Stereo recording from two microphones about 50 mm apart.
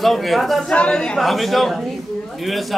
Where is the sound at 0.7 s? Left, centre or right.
Left.